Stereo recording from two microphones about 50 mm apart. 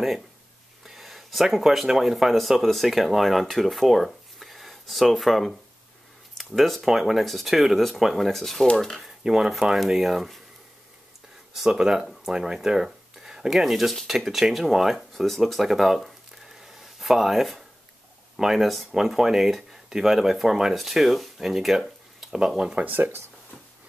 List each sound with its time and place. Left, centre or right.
0.8 s speech: centre
9.2 s speech: centre
11.5 s speech: centre
16.5 s a sound: centre
18.4 s speech: centre
22.8 s speech: right